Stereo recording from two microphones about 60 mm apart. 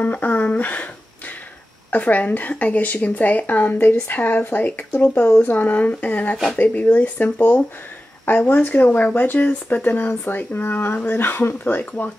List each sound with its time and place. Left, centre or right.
0.0 s speech: left
1.9 s speech: left